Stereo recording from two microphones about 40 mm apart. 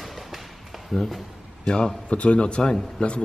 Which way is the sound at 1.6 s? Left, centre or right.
Left.